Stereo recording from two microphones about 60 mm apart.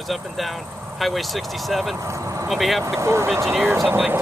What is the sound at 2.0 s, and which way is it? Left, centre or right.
Speech, right.